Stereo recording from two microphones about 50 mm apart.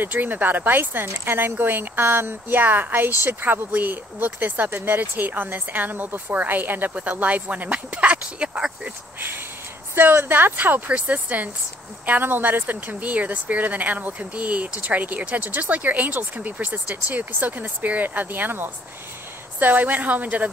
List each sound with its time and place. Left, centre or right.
0.0 s a woman's voice: right
9.9 s speech: right
12.1 s speech: right